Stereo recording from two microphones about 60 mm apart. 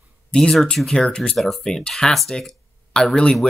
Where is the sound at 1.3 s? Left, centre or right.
Centre.